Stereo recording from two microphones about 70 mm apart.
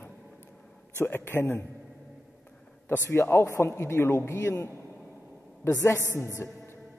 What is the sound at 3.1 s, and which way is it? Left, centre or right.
A man's voice, left.